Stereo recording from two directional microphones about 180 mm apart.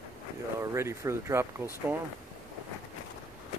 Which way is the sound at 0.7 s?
15° right (ahead or behind).